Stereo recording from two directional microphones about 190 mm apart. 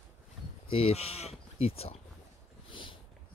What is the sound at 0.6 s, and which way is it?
Speech, 30° left (ahead or behind).